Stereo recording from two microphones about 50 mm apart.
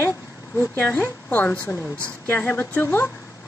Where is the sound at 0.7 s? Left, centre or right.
Left.